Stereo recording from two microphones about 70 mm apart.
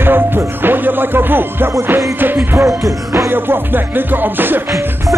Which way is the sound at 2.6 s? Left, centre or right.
Right.